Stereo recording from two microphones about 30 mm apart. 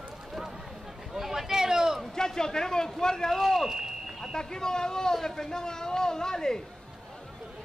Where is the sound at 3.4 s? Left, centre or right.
Centre.